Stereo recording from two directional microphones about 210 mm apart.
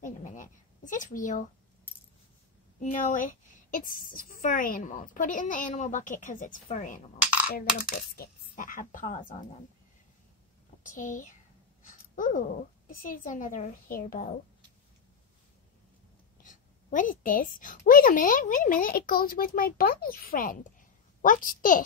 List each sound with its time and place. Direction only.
0.0 s a sound: 40° left (ahead or behind)
2.8 s a woman's voice: 35° left (ahead or behind)
11.0 s a woman's voice: 40° left (ahead or behind)
16.4 s a woman's voice: 40° left (ahead or behind)